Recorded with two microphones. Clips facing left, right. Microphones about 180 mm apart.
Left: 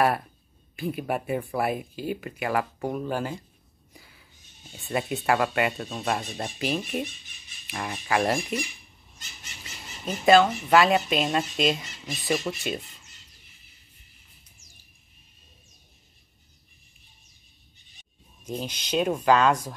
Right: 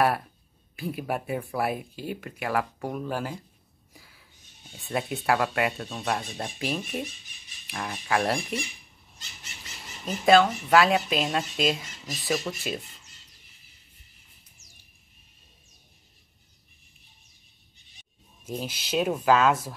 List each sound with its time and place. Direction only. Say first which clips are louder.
0.7 s speech: left 2 dB; centre (ahead or behind)
3.9 s a sound: left 2 dB; centre (ahead or behind)
4.7 s speech: left 2 dB; centre (ahead or behind)
9.6 s speech: left 1 dB; centre (ahead or behind)
18.4 s speech: left 1 dB; 5° right (ahead or behind)